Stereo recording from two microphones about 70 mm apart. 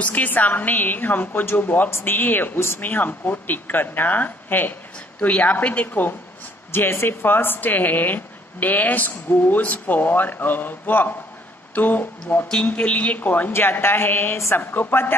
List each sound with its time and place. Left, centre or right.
0.0 s a woman's voice: left